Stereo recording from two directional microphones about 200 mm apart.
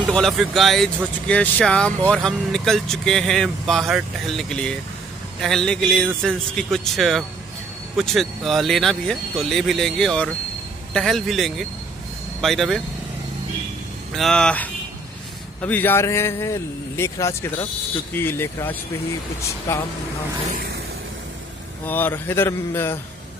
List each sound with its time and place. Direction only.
0.1 s speech: centre (ahead or behind)
14.1 s a man's voice: centre (ahead or behind)
20.5 s a sound: 50° right (ahead or behind)
21.8 s a man's voice: 10° left (ahead or behind)